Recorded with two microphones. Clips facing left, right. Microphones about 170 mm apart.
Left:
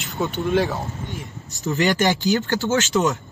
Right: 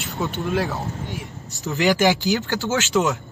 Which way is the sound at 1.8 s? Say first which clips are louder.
Right 2 dB; 10° right (ahead or behind).